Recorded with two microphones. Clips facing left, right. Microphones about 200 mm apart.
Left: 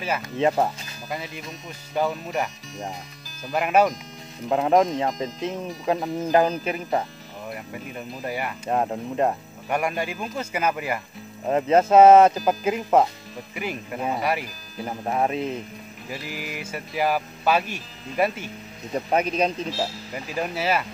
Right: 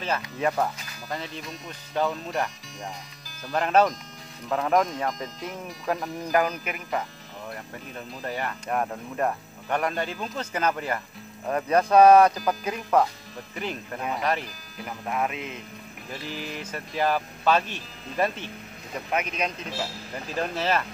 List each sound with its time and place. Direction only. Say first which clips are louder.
0.4 s speech: left 5 dB; 25° left (ahead or behind)
1.1 s speech: left 1 dB; 10° left (ahead or behind)
4.5 s speech: left 4 dB; 25° left (ahead or behind)
7.4 s speech: left 4 dB; 10° left (ahead or behind)
8.6 s speech: left 6 dB; 25° left (ahead or behind)
9.7 s speech: left 2 dB; 10° left (ahead or behind)
11.4 s speech: left 4 dB; 25° left (ahead or behind)
13.6 s speech: left 2 dB; 10° left (ahead or behind)
14.8 s speech: left 4 dB; 30° left (ahead or behind)
16.1 s speech: left 1 dB; 10° left (ahead or behind)
18.9 s speech: left 6 dB; 35° left (ahead or behind)
20.3 s speech: left 1 dB; 10° left (ahead or behind)